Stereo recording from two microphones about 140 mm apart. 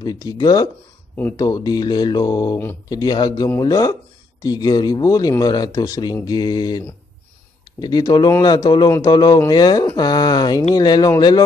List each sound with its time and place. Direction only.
0.0 s speech: 25° left (ahead or behind)
7.8 s speech: 30° left (ahead or behind)